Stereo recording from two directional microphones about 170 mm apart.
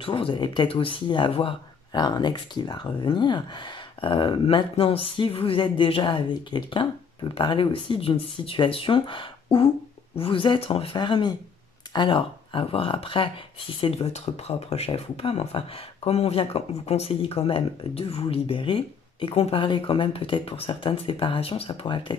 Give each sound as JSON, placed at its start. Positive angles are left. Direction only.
{"t": 0.0, "sound": "speech", "side_deg": 30}